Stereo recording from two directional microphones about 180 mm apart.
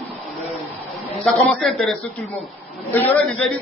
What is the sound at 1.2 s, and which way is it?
A man's voice, 5° left (ahead or behind).